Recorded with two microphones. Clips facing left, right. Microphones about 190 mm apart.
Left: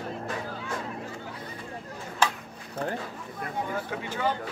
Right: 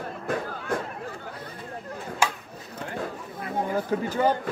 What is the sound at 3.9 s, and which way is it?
Speech, 40° right (ahead or behind).